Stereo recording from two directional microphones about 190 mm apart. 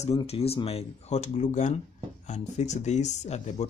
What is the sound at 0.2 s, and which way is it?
Speech, 30° left (ahead or behind).